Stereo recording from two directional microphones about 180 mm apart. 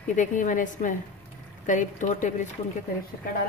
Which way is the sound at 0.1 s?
45° left (ahead or behind).